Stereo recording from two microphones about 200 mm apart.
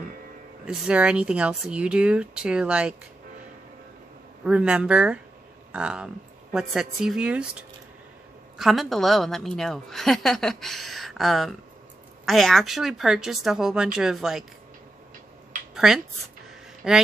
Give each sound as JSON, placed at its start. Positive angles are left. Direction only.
{"t": 0.7, "sound": "a woman's voice", "side_deg": -5}
{"t": 4.5, "sound": "a woman's voice", "side_deg": -5}
{"t": 8.5, "sound": "a woman's voice", "side_deg": 0}
{"t": 15.7, "sound": "a woman's voice", "side_deg": 0}